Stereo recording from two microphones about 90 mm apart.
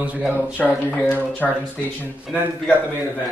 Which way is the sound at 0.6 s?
10° left (ahead or behind).